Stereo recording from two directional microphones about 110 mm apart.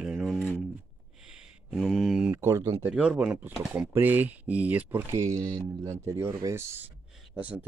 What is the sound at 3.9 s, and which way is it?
Speech, 15° right (ahead or behind).